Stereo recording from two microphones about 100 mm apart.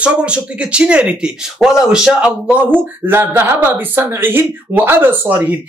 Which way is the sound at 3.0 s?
25° right (ahead or behind).